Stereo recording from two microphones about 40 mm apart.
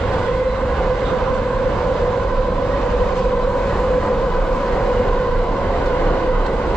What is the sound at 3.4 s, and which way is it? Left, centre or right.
Train, left.